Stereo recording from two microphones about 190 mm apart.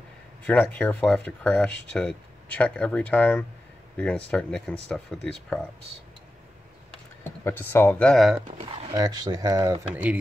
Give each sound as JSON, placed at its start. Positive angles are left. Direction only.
{"t": 0.5, "sound": "speech", "side_deg": 10}
{"t": 6.9, "sound": "speech", "side_deg": 10}
{"t": 8.9, "sound": "speech", "side_deg": -20}